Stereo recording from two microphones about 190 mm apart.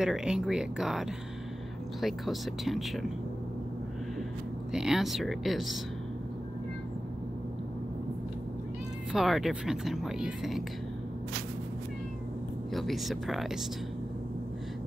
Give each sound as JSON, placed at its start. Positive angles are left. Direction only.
{"t": 0.0, "sound": "speech", "side_deg": -5}
{"t": 4.7, "sound": "speech", "side_deg": 0}
{"t": 9.1, "sound": "speech", "side_deg": 0}
{"t": 12.7, "sound": "speech", "side_deg": 0}